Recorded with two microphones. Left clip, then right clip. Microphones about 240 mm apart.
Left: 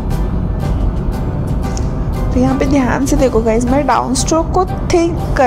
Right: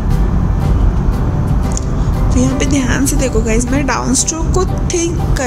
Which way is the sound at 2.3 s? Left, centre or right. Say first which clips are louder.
Left 2 dB; centre.